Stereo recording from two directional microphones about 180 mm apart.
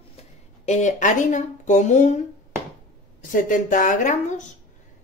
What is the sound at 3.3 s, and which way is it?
Speech, 45° left (ahead or behind).